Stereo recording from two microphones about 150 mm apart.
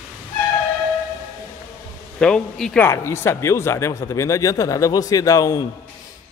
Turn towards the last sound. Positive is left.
turn(degrees=25)  # may be behind; listen again after turning